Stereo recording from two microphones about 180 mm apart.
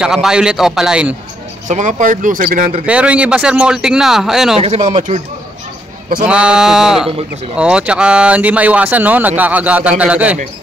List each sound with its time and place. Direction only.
0.0 s a man's voice: 5° right (ahead or behind)
1.7 s speech: 45° right (ahead or behind)
2.9 s a man's voice: 5° right (ahead or behind)
4.6 s speech: 35° right (ahead or behind)
6.2 s a man's voice: 5° right (ahead or behind)